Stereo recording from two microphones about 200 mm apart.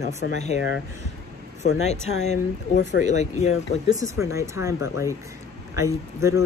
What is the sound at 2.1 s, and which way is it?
Speech, 35° left (ahead or behind).